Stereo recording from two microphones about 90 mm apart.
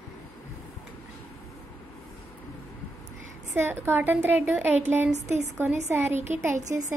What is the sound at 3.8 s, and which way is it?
A woman's voice, 25° right (ahead or behind).